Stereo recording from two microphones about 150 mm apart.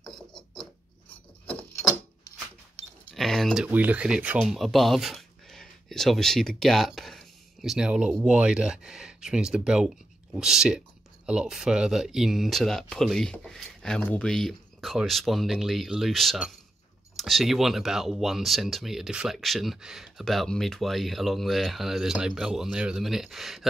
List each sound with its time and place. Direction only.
3.1 s keys jangling: centre (ahead or behind)
3.6 s speech: 10° right (ahead or behind)